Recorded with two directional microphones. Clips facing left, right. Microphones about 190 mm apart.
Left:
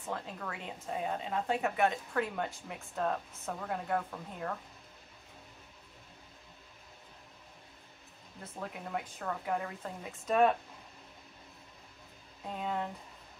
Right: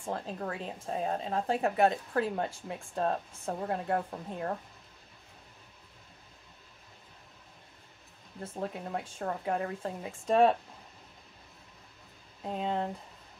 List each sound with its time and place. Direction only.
0.0 s speech: 35° right (ahead or behind)
8.5 s speech: 30° right (ahead or behind)
12.5 s speech: 30° right (ahead or behind)